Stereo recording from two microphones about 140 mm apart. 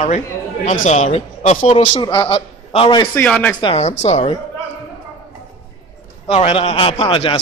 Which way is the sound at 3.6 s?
50° left (ahead or behind).